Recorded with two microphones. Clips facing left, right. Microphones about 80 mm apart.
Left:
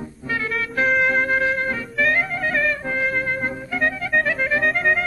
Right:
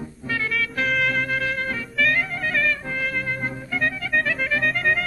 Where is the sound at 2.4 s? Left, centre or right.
Centre.